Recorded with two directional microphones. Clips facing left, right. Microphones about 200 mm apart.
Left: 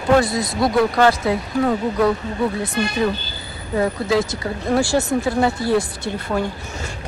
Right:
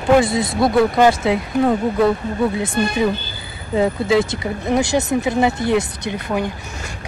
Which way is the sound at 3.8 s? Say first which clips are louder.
Right 3 dB; 25° right (ahead or behind).